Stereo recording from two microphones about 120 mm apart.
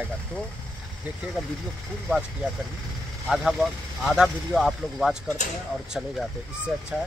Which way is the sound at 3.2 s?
Centre (ahead or behind).